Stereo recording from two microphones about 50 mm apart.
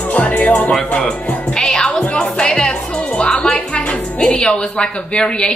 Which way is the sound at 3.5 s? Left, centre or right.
Left.